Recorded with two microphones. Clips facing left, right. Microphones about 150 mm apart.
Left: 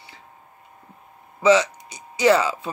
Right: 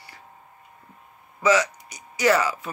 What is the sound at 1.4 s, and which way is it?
Speech, 25° left (ahead or behind).